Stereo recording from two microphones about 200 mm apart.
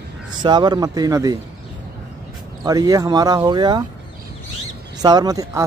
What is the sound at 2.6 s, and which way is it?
Speech, 20° right (ahead or behind).